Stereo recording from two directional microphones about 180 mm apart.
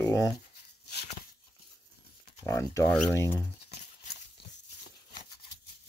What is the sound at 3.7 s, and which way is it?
Horse, 35° left (ahead or behind).